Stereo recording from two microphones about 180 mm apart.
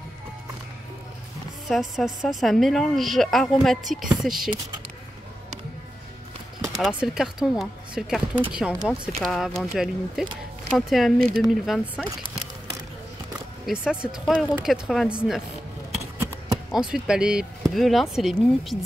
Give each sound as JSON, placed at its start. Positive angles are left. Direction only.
{"t": 1.7, "sound": "speech", "side_deg": 0}
{"t": 6.6, "sound": "speech", "side_deg": -5}
{"t": 13.7, "sound": "speech", "side_deg": -5}
{"t": 16.7, "sound": "speech", "side_deg": -5}